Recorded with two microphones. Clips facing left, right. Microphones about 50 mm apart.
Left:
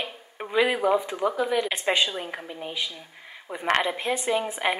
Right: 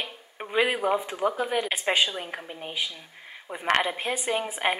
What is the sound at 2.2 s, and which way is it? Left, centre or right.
Speech, centre.